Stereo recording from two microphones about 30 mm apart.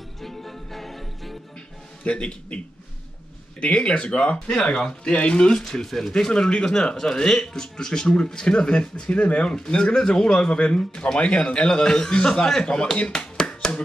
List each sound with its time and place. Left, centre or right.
0.2 s music: centre
2.0 s a man's voice: left
3.6 s speech: left
4.7 s a man's voice: left
5.6 s speech: centre
6.1 s speech: left
8.5 s a man's voice: left
9.1 s speech: left
9.9 s speech: left
11.1 s speech: left; by 12.7 s centre
13.1 s a sound: left